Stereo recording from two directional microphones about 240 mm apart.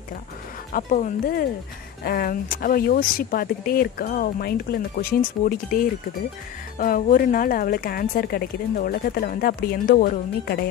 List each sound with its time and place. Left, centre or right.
0.7 s speech: left